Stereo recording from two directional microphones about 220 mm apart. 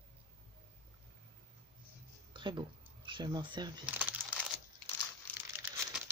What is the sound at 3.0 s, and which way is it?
Speech, 20° right (ahead or behind).